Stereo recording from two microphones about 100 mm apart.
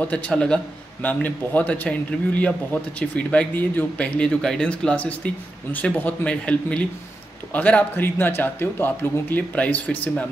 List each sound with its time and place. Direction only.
0.1 s a man's voice: 10° left (ahead or behind)